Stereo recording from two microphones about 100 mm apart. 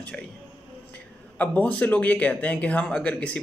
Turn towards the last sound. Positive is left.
turn(degrees=10)  # may be behind; listen again after turning